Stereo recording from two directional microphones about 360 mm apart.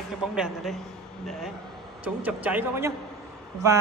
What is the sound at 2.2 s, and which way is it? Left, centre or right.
Speech, centre.